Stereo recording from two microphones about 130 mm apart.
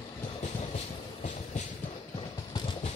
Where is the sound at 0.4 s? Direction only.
60° left (ahead or behind).